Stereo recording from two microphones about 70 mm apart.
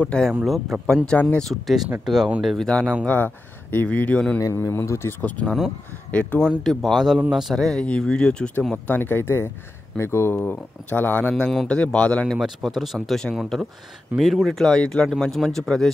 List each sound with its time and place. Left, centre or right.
0.0 s speech: centre
0.7 s speech: centre
1.1 s speech: left
1.5 s speech: centre
3.1 s speech: left
4.4 s speech: left
5.2 s speech: centre
6.6 s a man's voice: centre
7.5 s speech: centre
8.7 s speech: left
12.4 s speech: centre